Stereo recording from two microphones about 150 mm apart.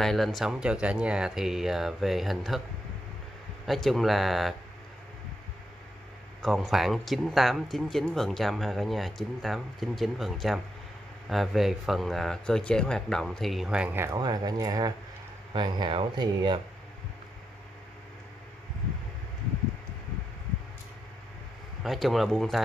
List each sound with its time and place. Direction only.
0.0 s speech: centre (ahead or behind)
3.6 s speech: centre (ahead or behind)
6.4 s speech: centre (ahead or behind); by 16.5 s 35° right (ahead or behind)
21.8 s speech: centre (ahead or behind)